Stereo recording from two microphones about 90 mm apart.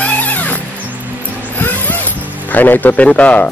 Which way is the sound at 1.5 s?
20° left (ahead or behind).